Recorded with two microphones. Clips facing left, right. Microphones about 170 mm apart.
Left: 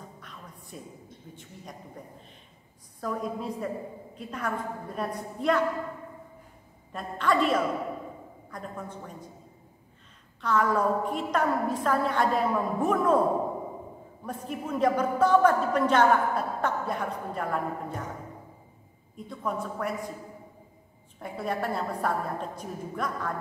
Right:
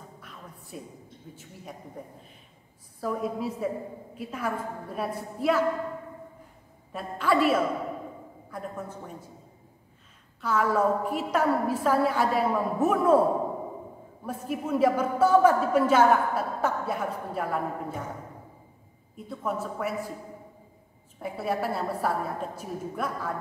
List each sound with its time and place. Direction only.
0.7 s a woman's voice: 5° right (ahead or behind)
3.0 s a woman's voice: 5° right (ahead or behind)
6.9 s a woman's voice: 5° right (ahead or behind)
10.4 s a woman's voice: 5° right (ahead or behind)
14.2 s a woman's voice: 5° right (ahead or behind)
19.2 s a woman's voice: 5° right (ahead or behind)
21.2 s a woman's voice: 5° right (ahead or behind)